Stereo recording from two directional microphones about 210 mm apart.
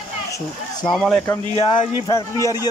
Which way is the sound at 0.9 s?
5° left (ahead or behind).